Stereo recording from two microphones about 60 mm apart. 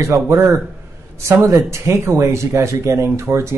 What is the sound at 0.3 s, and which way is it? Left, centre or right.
Speech, right.